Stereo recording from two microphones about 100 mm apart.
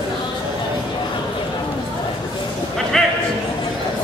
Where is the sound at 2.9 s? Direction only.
5° left (ahead or behind).